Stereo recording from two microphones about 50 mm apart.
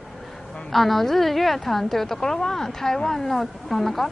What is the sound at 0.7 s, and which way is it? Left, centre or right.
A woman's voice, centre.